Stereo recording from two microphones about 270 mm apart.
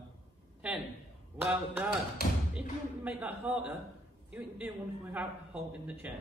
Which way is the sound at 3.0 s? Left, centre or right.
Centre.